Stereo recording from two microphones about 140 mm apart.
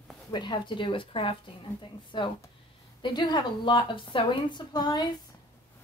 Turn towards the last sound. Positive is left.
turn(degrees=30)  # may be behind; listen again after turning